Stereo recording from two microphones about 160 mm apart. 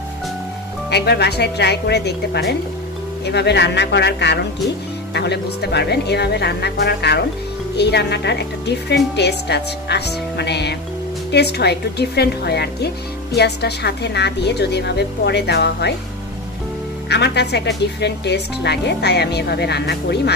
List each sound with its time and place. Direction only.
0.8 s speech: 90° left
17.1 s speech: 90° left